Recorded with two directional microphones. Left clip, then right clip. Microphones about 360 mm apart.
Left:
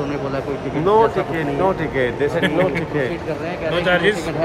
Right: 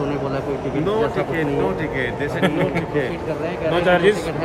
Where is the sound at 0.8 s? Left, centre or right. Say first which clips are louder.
Left 7 dB; centre.